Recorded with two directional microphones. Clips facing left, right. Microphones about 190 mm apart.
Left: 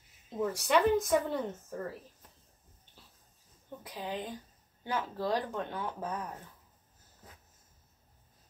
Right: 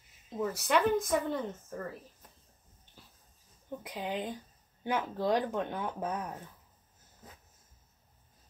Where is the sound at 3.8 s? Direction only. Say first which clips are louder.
Right 2 dB; 15° right (ahead or behind).